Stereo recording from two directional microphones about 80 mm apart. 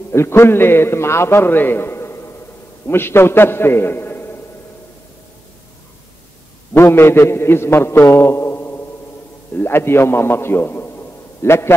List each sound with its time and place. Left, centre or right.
0.1 s a man's voice: left
6.7 s a man's voice: left